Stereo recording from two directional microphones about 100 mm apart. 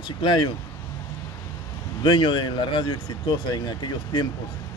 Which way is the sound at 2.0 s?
55° left (ahead or behind).